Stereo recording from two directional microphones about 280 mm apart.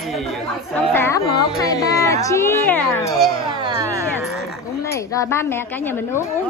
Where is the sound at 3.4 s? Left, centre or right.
Centre.